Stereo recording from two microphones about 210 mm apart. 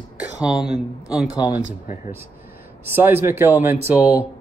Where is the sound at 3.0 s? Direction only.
10° right (ahead or behind).